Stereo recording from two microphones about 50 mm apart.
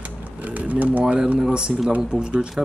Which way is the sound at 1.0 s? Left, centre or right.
Centre.